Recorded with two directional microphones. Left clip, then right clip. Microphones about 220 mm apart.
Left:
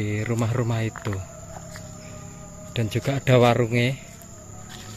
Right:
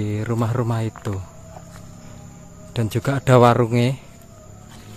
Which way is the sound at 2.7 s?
20° right (ahead or behind).